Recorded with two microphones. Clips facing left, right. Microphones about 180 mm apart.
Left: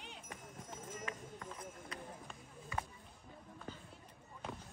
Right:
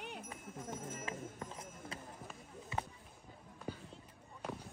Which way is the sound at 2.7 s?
25° right (ahead or behind).